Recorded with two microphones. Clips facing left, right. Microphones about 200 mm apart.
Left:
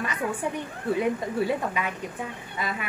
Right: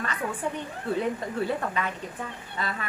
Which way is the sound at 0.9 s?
10° left (ahead or behind).